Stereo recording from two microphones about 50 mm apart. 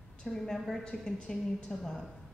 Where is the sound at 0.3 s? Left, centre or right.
Centre.